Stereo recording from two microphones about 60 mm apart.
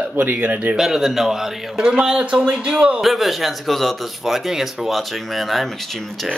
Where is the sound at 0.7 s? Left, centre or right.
Centre.